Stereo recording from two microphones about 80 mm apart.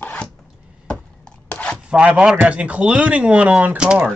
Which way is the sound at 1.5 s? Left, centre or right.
Centre.